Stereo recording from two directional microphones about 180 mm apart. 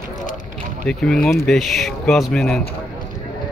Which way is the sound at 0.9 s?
5° left (ahead or behind).